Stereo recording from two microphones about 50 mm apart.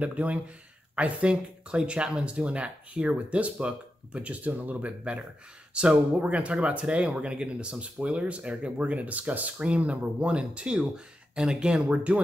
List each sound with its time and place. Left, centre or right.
0.0 s speech: right
11.9 s speech: right